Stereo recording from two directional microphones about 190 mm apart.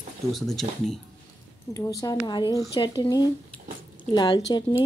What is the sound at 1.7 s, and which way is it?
Speech, 15° left (ahead or behind).